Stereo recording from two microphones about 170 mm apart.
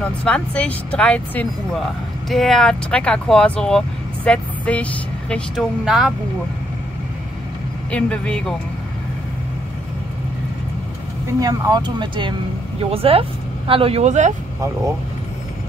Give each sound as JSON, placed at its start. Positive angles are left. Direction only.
{"t": 0.2, "sound": "speech", "side_deg": 5}
{"t": 7.9, "sound": "speech", "side_deg": 5}
{"t": 11.3, "sound": "speech", "side_deg": -20}